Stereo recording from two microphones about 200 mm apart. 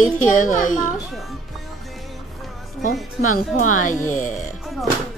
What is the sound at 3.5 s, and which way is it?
Speech, 40° left (ahead or behind).